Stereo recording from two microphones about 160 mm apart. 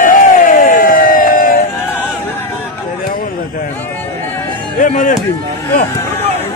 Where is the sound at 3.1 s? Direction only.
65° left (ahead or behind).